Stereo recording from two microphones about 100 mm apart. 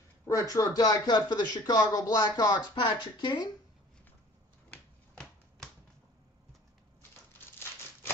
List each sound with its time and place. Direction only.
0.3 s speech: 35° left (ahead or behind); by 3.4 s 50° left (ahead or behind)
4.6 s finger snapping: 10° left (ahead or behind)
7.3 s a sound: 20° left (ahead or behind)